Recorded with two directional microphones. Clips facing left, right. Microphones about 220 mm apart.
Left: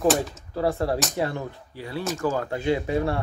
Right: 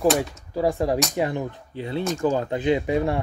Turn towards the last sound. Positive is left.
turn(degrees=-15)  # may be behind; listen again after turning